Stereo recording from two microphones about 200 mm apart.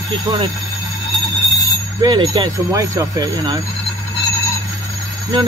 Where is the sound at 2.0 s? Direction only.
25° right (ahead or behind).